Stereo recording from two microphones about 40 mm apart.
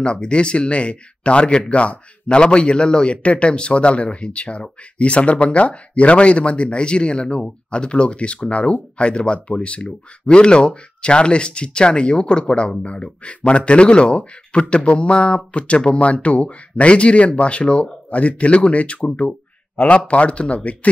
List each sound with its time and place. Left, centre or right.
0.0 s a man's voice: left